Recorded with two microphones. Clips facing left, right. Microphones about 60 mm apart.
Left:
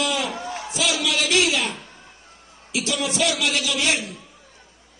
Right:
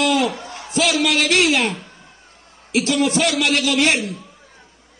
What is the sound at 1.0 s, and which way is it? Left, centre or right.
A man's voice, right.